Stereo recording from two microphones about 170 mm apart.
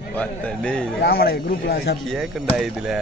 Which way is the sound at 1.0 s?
65° left (ahead or behind).